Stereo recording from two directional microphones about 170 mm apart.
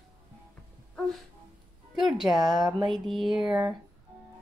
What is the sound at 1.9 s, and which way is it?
Speech, centre (ahead or behind).